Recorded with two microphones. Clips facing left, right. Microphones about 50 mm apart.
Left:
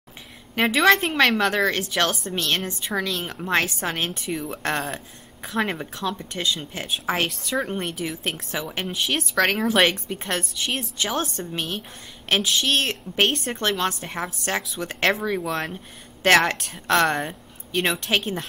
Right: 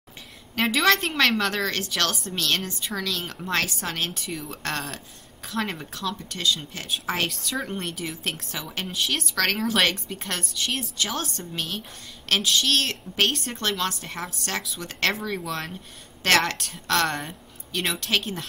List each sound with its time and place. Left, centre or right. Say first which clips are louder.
0.6 s a woman's voice: left 3 dB; centre
8.5 s a woman's voice: left 4 dB; left
17.8 s a woman's voice: left 3 dB; centre
18.1 s a woman's voice: left 1 dB; left